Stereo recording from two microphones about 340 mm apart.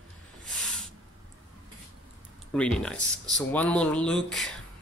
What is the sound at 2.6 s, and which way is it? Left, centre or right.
Speech, centre.